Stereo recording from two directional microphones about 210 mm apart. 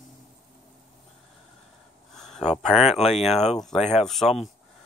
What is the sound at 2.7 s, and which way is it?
Speech, centre (ahead or behind).